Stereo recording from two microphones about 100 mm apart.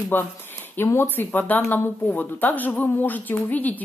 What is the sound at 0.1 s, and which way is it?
Speech, 20° left (ahead or behind).